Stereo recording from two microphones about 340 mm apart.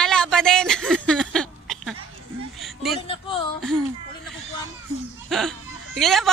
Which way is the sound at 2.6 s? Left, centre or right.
Centre.